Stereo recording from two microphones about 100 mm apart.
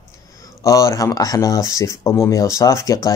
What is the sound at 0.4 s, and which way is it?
Speech, 35° left (ahead or behind).